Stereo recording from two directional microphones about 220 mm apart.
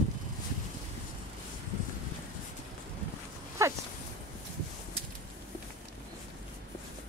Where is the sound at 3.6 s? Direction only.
15° right (ahead or behind).